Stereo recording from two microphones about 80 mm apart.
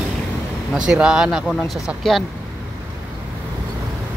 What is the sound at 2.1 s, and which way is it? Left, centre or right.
Speech, centre.